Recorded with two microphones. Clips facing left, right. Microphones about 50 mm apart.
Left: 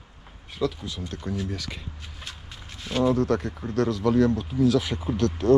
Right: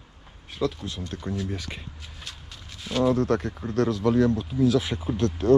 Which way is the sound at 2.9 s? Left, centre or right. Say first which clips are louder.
Even; centre.